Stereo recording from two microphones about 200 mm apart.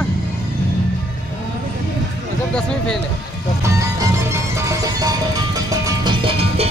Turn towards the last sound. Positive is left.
turn(degrees=-30)  # may be behind; listen again after turning